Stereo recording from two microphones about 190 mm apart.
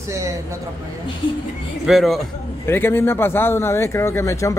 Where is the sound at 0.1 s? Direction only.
15° right (ahead or behind).